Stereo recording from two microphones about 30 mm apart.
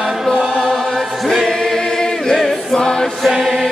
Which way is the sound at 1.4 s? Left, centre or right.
Centre.